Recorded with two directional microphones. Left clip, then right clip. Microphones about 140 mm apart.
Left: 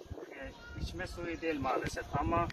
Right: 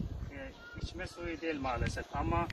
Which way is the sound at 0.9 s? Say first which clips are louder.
Left 1 dB; 35° right (ahead or behind).